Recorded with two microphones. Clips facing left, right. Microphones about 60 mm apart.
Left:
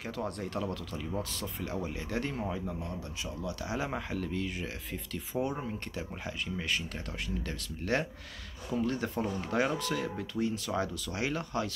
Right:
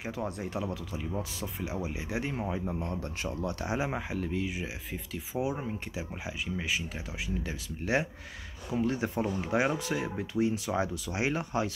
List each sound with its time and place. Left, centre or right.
0.0 s speech: centre
2.8 s speech: right